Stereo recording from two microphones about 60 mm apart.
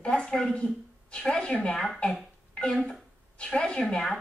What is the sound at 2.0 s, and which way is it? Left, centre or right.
Speech, centre.